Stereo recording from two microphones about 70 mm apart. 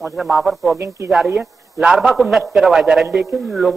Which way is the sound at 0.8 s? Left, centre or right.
Right.